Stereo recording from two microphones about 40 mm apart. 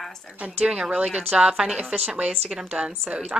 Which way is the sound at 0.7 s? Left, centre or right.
Centre.